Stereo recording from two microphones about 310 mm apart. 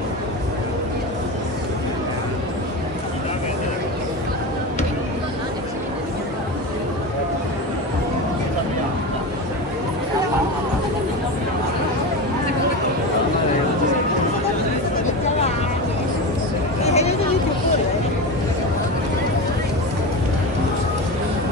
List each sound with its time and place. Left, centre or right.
16.8 s hubbub: left